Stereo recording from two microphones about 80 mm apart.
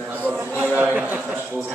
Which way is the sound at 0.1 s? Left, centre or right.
Centre.